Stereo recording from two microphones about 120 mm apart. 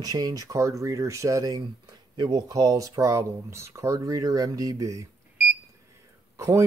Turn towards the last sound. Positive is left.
turn(degrees=-25)  # may be behind; listen again after turning